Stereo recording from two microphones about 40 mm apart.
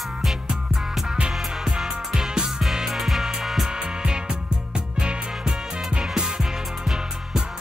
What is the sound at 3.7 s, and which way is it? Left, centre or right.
Music, right.